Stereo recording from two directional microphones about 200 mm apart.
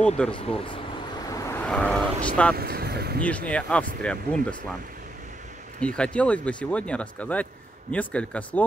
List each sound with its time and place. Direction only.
0.0 s speech: 5° left (ahead or behind)
1.3 s vehicle: 15° left (ahead or behind)
2.5 s speech: 50° right (ahead or behind)
3.2 s speech: 5° left (ahead or behind)
5.8 s speech: 5° left (ahead or behind)